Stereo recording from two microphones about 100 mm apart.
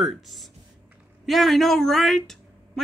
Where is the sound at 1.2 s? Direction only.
Centre (ahead or behind).